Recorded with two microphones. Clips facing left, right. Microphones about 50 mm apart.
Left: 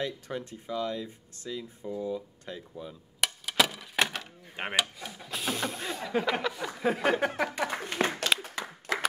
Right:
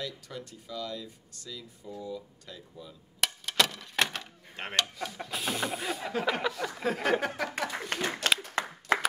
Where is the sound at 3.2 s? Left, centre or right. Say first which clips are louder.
Left 1 dB; centre.